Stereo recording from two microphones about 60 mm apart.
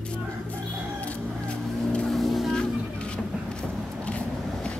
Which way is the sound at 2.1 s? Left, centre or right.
Centre.